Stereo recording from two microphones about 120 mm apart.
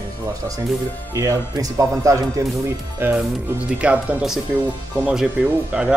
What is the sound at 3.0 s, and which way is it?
Speech, 15° right (ahead or behind).